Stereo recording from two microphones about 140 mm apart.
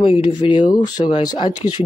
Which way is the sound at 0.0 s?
40° left (ahead or behind).